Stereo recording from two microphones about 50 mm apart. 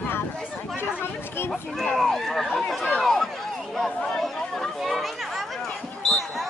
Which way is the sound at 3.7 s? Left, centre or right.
Centre.